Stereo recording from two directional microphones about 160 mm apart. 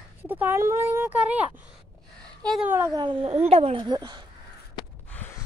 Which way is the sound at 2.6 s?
15° right (ahead or behind).